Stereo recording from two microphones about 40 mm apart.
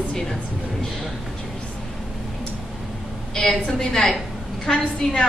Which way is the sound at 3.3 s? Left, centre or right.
Centre.